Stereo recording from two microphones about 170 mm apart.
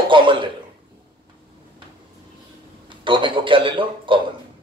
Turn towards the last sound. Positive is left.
turn(degrees=-30)  # may be behind; listen again after turning